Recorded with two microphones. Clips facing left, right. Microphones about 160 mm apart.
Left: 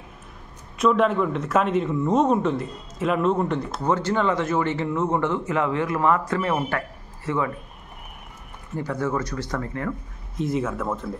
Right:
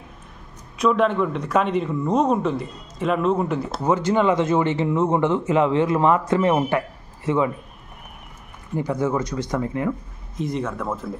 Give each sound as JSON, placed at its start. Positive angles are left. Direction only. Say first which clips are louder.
{"t": 0.7, "sound": "a man's voice", "louder": "right 1 dB", "side_deg": 0}
{"t": 3.8, "sound": "speech", "louder": "right 4 dB", "side_deg": -15}
{"t": 8.7, "sound": "speech", "louder": "right 3 dB", "side_deg": -15}
{"t": 10.3, "sound": "a man's voice", "louder": "left 1 dB", "side_deg": 0}